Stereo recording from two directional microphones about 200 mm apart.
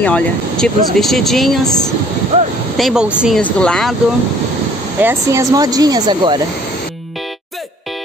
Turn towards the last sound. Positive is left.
turn(degrees=-20)  # may be behind; listen again after turning